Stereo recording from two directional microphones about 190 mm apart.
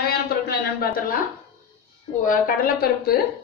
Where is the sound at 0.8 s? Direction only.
50° left (ahead or behind).